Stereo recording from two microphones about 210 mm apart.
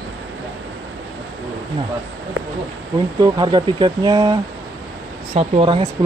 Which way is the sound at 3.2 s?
20° right (ahead or behind).